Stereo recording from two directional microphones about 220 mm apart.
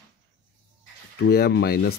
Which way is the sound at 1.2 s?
50° left (ahead or behind).